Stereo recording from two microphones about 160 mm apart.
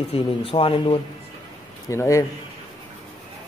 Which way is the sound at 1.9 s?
20° left (ahead or behind).